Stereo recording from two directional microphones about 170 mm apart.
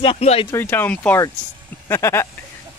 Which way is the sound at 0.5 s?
10° left (ahead or behind).